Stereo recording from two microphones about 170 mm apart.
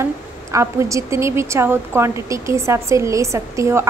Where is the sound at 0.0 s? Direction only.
15° right (ahead or behind).